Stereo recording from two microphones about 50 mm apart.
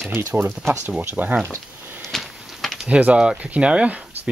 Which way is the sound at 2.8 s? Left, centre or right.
Right.